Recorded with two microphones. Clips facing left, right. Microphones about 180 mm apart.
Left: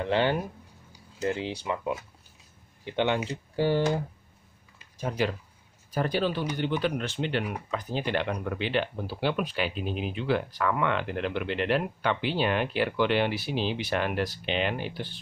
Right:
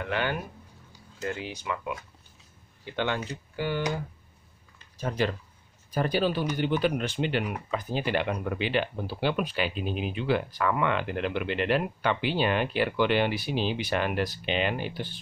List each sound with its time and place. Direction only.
0.0 s speech: 30° left (ahead or behind)
3.5 s speech: 35° left (ahead or behind)
4.7 s a sound: 10° left (ahead or behind)
5.9 s speech: 5° right (ahead or behind)